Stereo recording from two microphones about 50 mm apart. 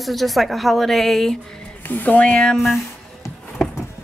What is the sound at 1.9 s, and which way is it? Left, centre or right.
Speech, left.